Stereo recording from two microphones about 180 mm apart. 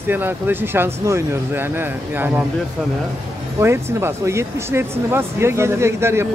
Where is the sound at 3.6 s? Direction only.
15° right (ahead or behind).